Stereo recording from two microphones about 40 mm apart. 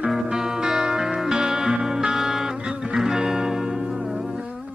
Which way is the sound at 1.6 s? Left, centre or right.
Right.